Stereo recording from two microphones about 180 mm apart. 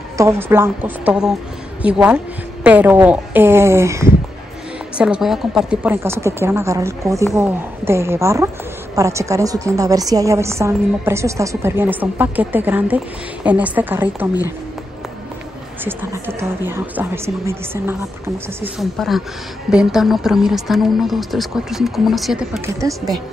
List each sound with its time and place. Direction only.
0.2 s a woman's voice: 15° right (ahead or behind)
4.9 s a woman's voice: 5° right (ahead or behind)
15.8 s a woman's voice: 10° right (ahead or behind)
18.8 s a woman's voice: centre (ahead or behind)
22.8 s a woman's voice: 20° right (ahead or behind)